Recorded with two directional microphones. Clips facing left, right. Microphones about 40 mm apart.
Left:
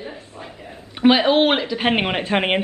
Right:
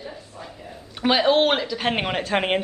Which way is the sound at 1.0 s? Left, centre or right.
Centre.